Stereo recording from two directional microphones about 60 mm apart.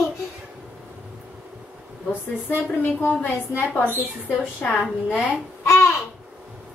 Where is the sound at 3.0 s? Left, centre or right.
Left.